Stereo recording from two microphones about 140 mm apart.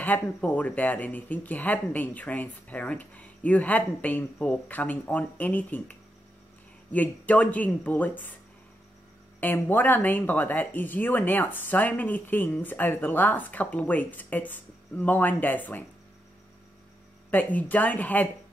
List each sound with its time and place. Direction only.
0.0 s speech: 10° left (ahead or behind)
9.4 s speech: 15° left (ahead or behind)
17.3 s speech: 10° left (ahead or behind)